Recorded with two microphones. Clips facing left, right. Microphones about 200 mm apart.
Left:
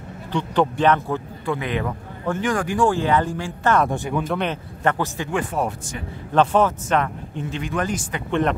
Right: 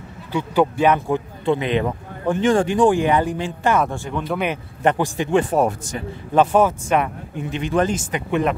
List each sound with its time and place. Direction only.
0.3 s speech: 10° right (ahead or behind)
3.9 s speech: 15° left (ahead or behind)
4.3 s speech: 10° right (ahead or behind)
5.4 s speech: 40° right (ahead or behind)
6.3 s speech: 10° right (ahead or behind)
8.3 s speech: 5° right (ahead or behind)